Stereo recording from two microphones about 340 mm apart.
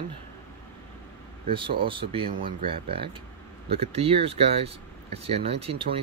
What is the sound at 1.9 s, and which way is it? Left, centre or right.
Speech, centre.